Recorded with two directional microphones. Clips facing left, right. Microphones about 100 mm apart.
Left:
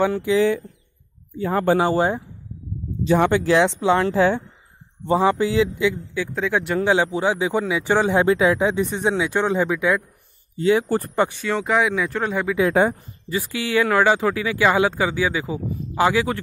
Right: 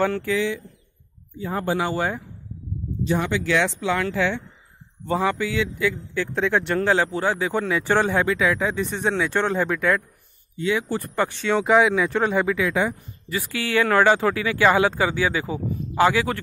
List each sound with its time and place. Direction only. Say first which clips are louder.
0.0 s speech: left 2 dB; 15° left (ahead or behind)
1.4 s speech: left 6 dB; 90° left
1.8 s a man's voice: left 5 dB; 30° left (ahead or behind)
3.3 s speech: left 5 dB; 45° left (ahead or behind)
3.5 s speech: left 3 dB; 30° left (ahead or behind)
5.0 s a man's voice: left 5 dB; 25° left (ahead or behind)
5.9 s speech: left 2 dB; 10° left (ahead or behind)
10.6 s speech: left 5 dB; 35° left (ahead or behind)
11.1 s speech: left 1 dB; 20° left (ahead or behind)
11.4 s speech: right 3 dB; centre (ahead or behind)
12.5 s speech: left 5 dB; 40° left (ahead or behind)
13.3 s a man's voice: left 2 dB; 20° left (ahead or behind)